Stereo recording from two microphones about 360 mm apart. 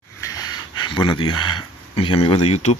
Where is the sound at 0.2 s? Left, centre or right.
Centre.